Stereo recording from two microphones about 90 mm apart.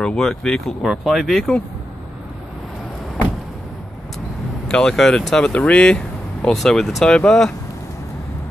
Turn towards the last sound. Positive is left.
turn(degrees=10)  # may be behind; listen again after turning